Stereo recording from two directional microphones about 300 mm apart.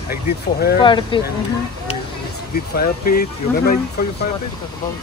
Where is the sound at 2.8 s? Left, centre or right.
Left.